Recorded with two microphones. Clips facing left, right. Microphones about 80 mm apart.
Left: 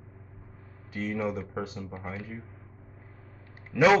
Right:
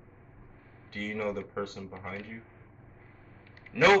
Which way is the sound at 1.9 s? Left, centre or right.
Left.